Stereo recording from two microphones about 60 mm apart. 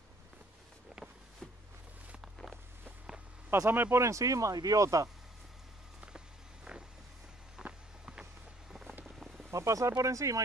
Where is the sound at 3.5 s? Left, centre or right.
Right.